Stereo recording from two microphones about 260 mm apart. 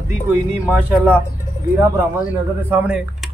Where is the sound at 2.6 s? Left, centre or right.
Centre.